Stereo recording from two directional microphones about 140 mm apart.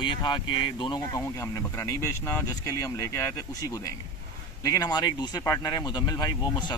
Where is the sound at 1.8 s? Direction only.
20° left (ahead or behind).